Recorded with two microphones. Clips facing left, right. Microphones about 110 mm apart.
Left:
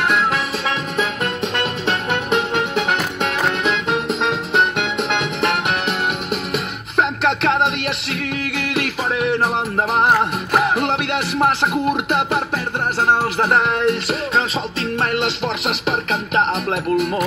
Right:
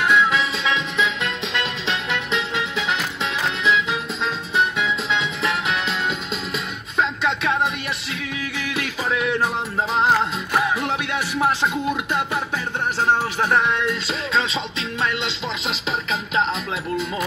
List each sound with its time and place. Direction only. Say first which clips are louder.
0.1 s music: even; 55° left (ahead or behind); by 7.7 s 70° left (ahead or behind)
8.6 s music: left 6 dB; 55° left (ahead or behind)
9.1 s music: left 3 dB; 40° left (ahead or behind)
13.0 s music: left 3 dB; 45° left (ahead or behind)